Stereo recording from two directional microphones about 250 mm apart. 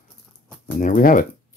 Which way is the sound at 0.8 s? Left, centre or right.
Left.